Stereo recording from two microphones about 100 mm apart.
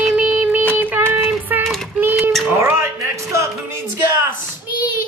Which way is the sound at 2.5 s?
30° right (ahead or behind).